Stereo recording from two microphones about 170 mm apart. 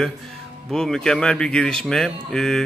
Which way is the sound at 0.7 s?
Centre (ahead or behind).